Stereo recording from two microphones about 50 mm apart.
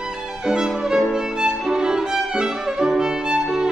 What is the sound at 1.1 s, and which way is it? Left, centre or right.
Violin, centre.